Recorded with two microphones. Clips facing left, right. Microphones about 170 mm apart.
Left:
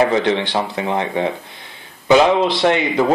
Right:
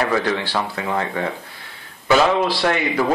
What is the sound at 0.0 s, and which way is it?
Speech, 20° left (ahead or behind).